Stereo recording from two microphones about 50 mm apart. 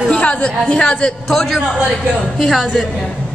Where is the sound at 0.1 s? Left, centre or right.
Left.